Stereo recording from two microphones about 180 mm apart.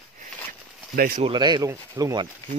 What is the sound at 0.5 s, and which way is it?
Zipper, 55° right (ahead or behind).